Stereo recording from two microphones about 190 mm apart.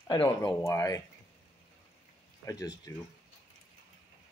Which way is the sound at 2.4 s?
20° left (ahead or behind).